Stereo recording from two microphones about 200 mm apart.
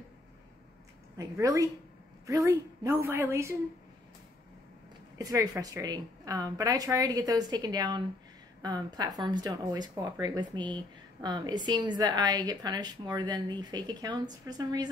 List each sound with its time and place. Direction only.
1.4 s a woman's voice: 15° right (ahead or behind)
5.1 s speech: 20° right (ahead or behind)